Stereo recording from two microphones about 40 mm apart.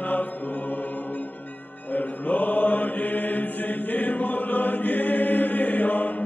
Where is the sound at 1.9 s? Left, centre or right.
Left.